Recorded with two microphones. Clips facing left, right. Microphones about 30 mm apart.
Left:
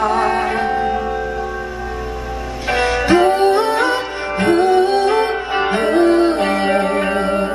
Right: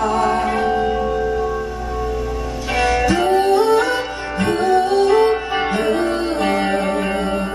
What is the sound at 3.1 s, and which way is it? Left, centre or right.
Music, left.